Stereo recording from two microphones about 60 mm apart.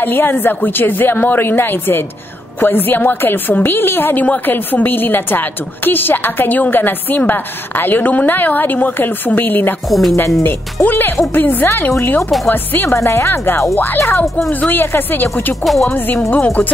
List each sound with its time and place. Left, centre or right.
0.0 s a woman's voice: left
9.8 s speech: centre
10.4 s a woman's voice: left
12.2 s speech: centre
12.4 s a woman's voice: left
14.5 s a woman's voice: left
15.6 s speech: centre